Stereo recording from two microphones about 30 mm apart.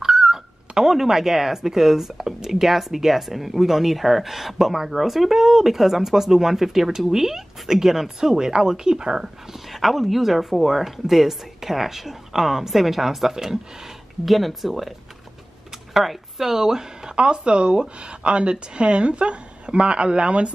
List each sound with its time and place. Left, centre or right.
0.0 s speech: centre
9.7 s speech: centre
14.2 s a woman's voice: centre
17.1 s speech: right